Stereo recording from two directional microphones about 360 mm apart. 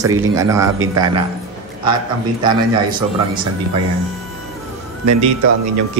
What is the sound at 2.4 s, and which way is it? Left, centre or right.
Speech, centre.